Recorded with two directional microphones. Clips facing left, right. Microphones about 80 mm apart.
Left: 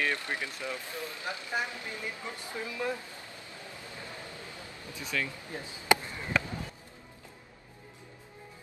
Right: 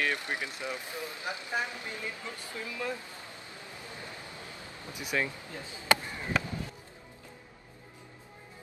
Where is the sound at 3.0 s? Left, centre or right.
Right.